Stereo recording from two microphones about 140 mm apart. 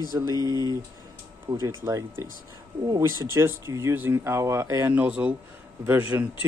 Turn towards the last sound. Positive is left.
turn(degrees=-10)  # may be behind; listen again after turning